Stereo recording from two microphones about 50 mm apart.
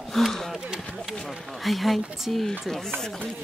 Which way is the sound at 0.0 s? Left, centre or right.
Centre.